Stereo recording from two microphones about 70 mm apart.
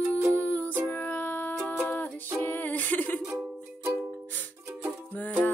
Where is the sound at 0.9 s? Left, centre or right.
Left.